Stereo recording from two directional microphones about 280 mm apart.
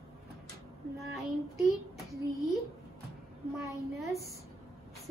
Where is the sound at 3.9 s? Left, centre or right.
Centre.